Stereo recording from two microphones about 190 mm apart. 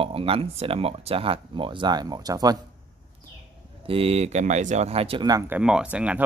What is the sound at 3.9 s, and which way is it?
Speech, 30° right (ahead or behind).